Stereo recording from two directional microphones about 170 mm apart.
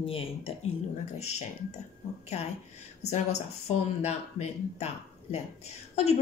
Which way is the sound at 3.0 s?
40° left (ahead or behind).